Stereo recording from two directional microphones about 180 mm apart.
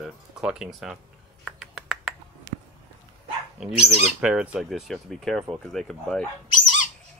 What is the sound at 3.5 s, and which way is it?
Speech, 5° right (ahead or behind).